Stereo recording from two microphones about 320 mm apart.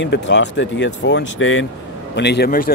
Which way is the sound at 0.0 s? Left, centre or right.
Left.